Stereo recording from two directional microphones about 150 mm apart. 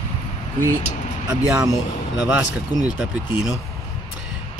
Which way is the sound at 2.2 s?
10° right (ahead or behind).